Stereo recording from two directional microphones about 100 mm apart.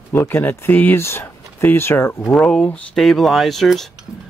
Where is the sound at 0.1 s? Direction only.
20° left (ahead or behind).